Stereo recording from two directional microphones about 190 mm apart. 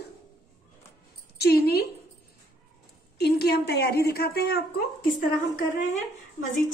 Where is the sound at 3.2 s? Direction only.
55° left (ahead or behind).